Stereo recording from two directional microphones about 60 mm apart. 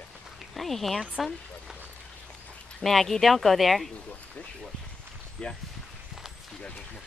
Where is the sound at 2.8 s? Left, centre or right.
Centre.